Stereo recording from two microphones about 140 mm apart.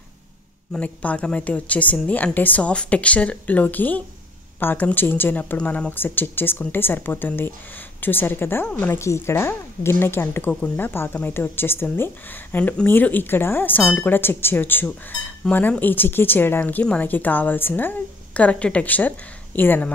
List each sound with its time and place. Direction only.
0.7 s speech: 10° left (ahead or behind)